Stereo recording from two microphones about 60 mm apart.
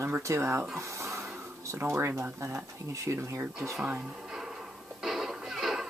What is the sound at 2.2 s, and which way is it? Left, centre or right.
Speech, right.